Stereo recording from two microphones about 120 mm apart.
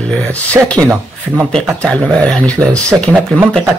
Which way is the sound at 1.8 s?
10° left (ahead or behind).